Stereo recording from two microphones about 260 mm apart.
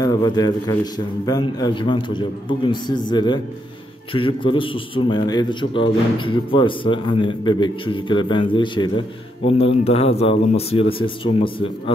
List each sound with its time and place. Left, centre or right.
0.0 s a man's voice: centre